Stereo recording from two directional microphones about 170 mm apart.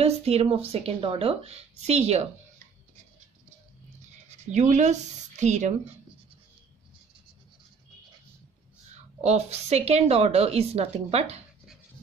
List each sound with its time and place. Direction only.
0.0 s a woman's voice: 35° right (ahead or behind)
4.3 s speech: 40° right (ahead or behind)
8.9 s a woman's voice: 40° right (ahead or behind)